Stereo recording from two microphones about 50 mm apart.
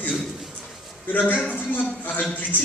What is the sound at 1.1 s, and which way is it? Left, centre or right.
A man's voice, left.